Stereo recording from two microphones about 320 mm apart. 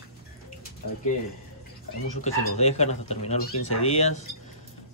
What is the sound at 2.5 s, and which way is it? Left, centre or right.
Speech, left.